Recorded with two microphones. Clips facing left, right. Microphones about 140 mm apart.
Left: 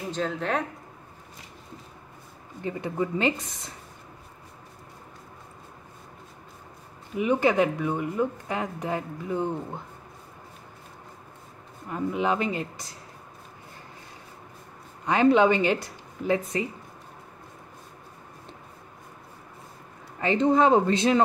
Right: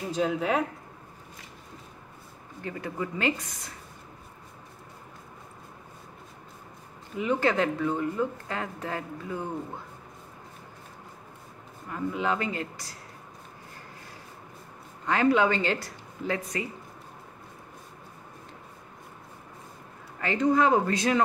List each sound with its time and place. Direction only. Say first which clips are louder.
0.1 s speech: right 2 dB; 10° right (ahead or behind)
2.6 s speech: left 5 dB; 20° left (ahead or behind)
7.2 s speech: left 3 dB; 15° left (ahead or behind)
11.9 s speech: left 3 dB; 20° left (ahead or behind)
15.0 s speech: left 4 dB; 20° left (ahead or behind)
20.2 s speech: left 3 dB; 25° left (ahead or behind)